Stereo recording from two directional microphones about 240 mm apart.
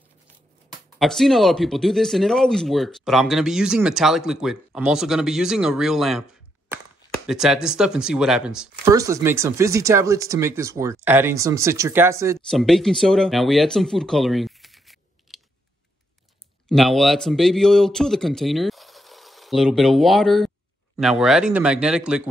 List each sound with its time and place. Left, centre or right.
0.9 s speech: centre
7.2 s speech: centre
12.4 s speech: centre
16.6 s speech: centre